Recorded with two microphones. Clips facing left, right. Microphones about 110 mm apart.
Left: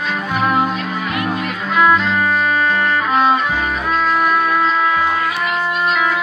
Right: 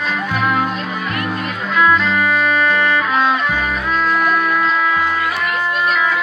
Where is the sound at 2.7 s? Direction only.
5° left (ahead or behind).